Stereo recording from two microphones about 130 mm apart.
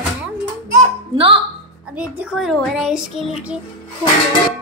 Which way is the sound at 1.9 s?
10° right (ahead or behind).